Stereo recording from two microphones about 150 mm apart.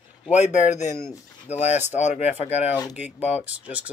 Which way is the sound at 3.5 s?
10° right (ahead or behind).